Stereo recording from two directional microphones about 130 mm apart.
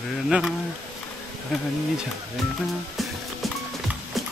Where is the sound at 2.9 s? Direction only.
Centre (ahead or behind).